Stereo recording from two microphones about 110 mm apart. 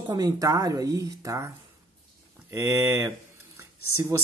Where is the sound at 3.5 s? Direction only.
25° right (ahead or behind).